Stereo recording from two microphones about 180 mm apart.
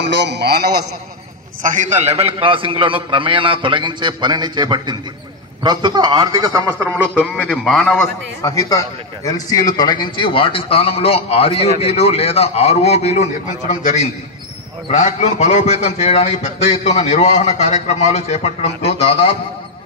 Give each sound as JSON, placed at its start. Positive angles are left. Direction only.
{"t": 0.0, "sound": "a man's voice", "side_deg": -75}
{"t": 1.6, "sound": "a man's voice", "side_deg": -45}
{"t": 7.0, "sound": "a man's voice", "side_deg": -5}
{"t": 8.4, "sound": "a man's voice", "side_deg": 20}